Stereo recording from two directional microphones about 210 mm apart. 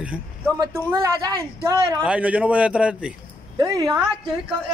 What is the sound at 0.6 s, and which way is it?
Speech, 15° right (ahead or behind).